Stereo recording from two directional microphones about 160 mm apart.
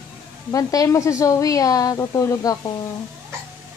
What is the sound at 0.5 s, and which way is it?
A woman's voice, 20° left (ahead or behind).